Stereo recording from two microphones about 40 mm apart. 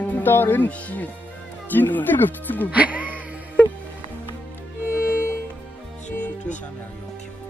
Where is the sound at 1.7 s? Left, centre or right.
Left.